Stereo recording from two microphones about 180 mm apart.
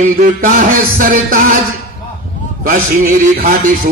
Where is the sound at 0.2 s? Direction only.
50° right (ahead or behind).